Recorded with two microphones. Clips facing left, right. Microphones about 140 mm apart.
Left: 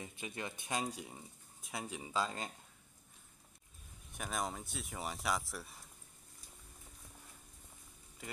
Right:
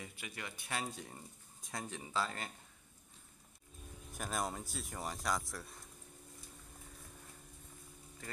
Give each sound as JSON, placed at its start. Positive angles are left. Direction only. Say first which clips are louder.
{"t": 0.0, "sound": "speech", "louder": "left 4 dB", "side_deg": 20}
{"t": 4.2, "sound": "speech", "louder": "right 1 dB", "side_deg": 0}